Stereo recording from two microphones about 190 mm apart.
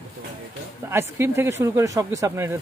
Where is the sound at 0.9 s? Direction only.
15° right (ahead or behind).